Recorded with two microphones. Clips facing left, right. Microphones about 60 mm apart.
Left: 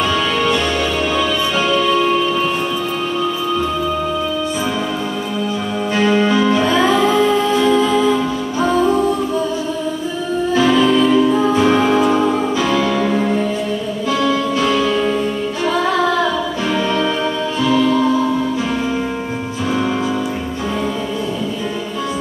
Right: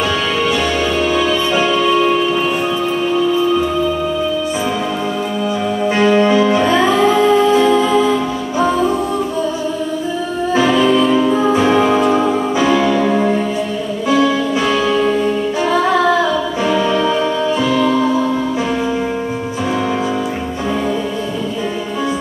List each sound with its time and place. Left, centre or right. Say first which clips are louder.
1.1 s music: right 2 dB; centre
5.9 s music: right 2 dB; centre
10.5 s music: right 1 dB; centre